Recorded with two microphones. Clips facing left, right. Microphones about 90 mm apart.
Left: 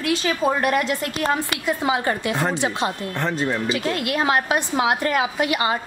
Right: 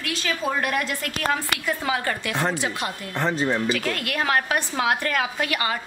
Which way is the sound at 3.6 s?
20° left (ahead or behind).